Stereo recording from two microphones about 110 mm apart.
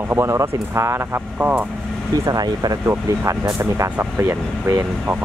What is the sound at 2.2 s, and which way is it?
Speech, 35° right (ahead or behind).